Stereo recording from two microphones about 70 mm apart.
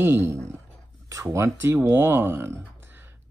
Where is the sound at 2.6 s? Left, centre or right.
Right.